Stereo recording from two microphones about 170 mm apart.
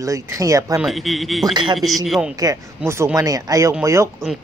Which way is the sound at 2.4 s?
20° right (ahead or behind).